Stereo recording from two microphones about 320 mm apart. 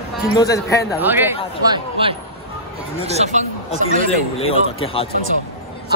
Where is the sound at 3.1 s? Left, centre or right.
Right.